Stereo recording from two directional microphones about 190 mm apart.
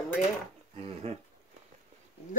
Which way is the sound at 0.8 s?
30° right (ahead or behind).